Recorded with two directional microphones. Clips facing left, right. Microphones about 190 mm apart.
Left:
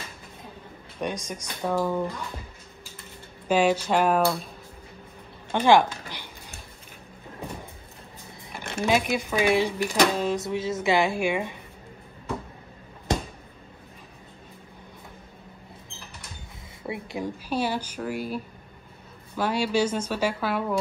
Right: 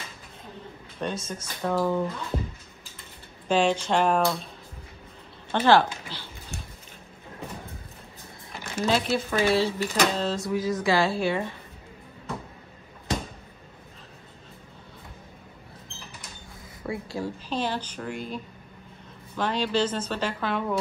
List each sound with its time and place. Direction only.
0.9 s speech: 15° left (ahead or behind)
3.4 s speech: 10° left (ahead or behind)
5.5 s speech: 15° left (ahead or behind)
8.8 s speech: 15° left (ahead or behind)
16.8 s speech: 20° left (ahead or behind)